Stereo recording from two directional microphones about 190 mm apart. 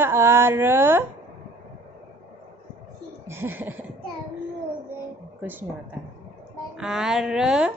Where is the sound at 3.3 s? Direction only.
10° right (ahead or behind).